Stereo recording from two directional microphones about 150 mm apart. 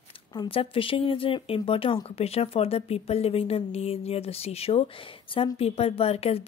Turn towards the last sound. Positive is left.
turn(degrees=40)  # may be behind; listen again after turning